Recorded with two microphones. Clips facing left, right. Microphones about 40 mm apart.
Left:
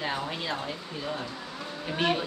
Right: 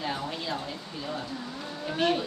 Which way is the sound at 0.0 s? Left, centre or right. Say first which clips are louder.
Left 1 dB; left.